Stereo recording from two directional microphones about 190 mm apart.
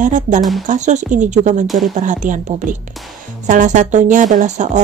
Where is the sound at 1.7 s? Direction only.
Centre (ahead or behind).